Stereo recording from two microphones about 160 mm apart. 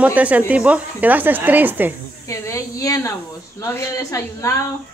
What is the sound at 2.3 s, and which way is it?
A woman's voice, 20° left (ahead or behind).